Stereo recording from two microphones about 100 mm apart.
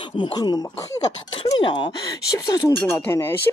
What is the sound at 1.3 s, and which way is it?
Speech, 60° left (ahead or behind).